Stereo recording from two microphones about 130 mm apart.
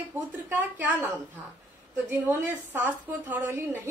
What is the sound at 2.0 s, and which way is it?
A woman's voice, 15° right (ahead or behind).